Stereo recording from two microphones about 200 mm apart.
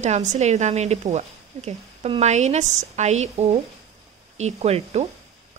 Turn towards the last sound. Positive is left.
turn(degrees=-30)  # may be behind; listen again after turning